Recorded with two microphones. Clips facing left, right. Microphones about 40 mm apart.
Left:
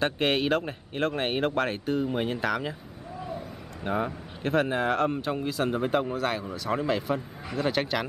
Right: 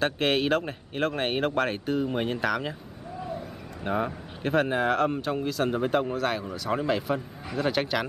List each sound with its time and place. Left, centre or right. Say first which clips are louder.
0.0 s speech: right 1 dB; centre
3.8 s speech: right 1 dB; centre